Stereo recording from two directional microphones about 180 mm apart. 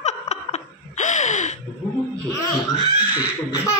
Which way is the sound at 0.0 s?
40° left (ahead or behind).